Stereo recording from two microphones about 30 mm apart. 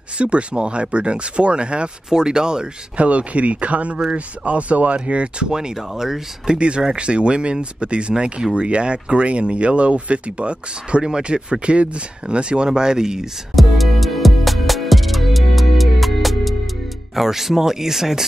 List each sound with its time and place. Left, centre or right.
0.2 s speech: right
2.0 s speech: right
3.0 s speech: right
5.5 s speech: centre
6.5 s speech: right
8.1 s speech: right
8.5 s speech: right
11.1 s speech: right
13.6 s music: centre
17.1 s speech: centre